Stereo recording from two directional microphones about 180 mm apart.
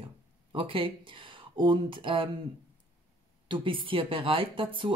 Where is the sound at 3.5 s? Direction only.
30° right (ahead or behind).